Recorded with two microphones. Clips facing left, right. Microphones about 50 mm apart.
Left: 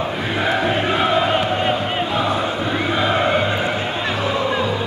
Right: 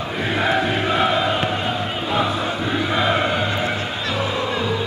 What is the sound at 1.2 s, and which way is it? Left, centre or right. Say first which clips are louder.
Chant: left 3 dB; left.